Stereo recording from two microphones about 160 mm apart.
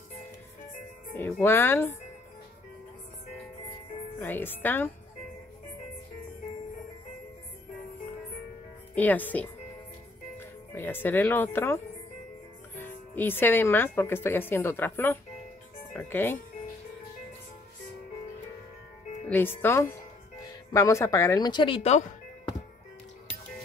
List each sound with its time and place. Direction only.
1.1 s speech: 15° left (ahead or behind)
4.2 s speech: 10° left (ahead or behind)
8.9 s speech: 10° left (ahead or behind)
10.7 s speech: 15° left (ahead or behind)
19.2 s speech: 10° left (ahead or behind); by 21.9 s 30° left (ahead or behind)